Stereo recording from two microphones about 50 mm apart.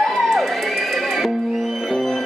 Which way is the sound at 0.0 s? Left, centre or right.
Centre.